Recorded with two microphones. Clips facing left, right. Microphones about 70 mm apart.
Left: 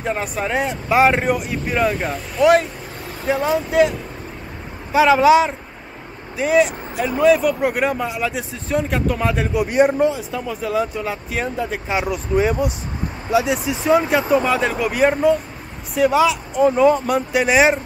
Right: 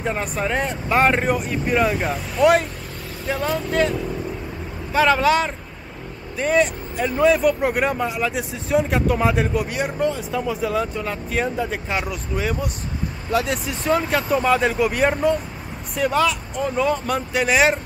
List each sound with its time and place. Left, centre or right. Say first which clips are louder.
0.0 s speech: left 1 dB; centre
3.3 s speech: left 4 dB; centre
4.9 s speech: left 5 dB; centre
12.4 s speech: left 7 dB; left
13.3 s speech: left 4 dB; centre
14.3 s speech: right 2 dB; centre